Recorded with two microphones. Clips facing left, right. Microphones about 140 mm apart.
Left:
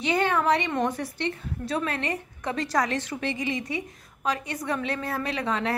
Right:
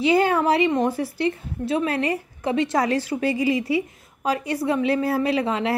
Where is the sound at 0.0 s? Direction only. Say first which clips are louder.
Right 5 dB; 30° right (ahead or behind).